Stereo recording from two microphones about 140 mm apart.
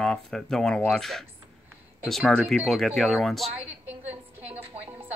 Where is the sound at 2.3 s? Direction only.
Centre (ahead or behind).